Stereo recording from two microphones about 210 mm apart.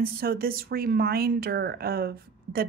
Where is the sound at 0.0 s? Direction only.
45° right (ahead or behind).